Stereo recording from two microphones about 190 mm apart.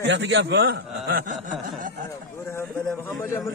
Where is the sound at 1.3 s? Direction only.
40° right (ahead or behind).